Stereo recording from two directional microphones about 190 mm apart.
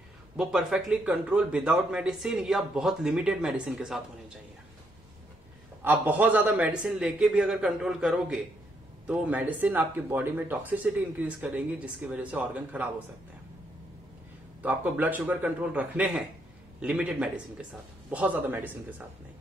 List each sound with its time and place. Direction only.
0.4 s speech: centre (ahead or behind)
5.9 s speech: 10° right (ahead or behind)
14.6 s speech: 10° right (ahead or behind)